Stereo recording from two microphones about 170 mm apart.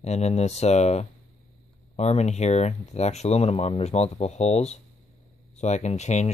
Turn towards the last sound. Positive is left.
turn(degrees=40)  # may be behind; listen again after turning